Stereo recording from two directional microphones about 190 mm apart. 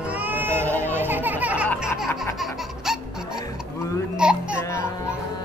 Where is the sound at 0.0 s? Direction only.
10° right (ahead or behind).